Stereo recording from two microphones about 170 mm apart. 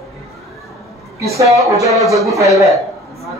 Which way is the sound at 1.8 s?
Centre (ahead or behind).